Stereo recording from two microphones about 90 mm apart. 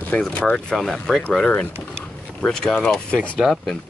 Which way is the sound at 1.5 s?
20° left (ahead or behind).